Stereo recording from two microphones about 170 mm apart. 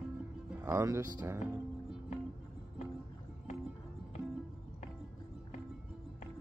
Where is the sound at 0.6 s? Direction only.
15° right (ahead or behind).